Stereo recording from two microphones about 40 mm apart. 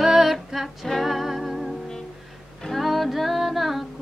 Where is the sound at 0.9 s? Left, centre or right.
Centre.